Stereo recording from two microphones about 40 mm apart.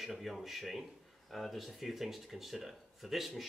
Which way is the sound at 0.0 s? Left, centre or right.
Centre.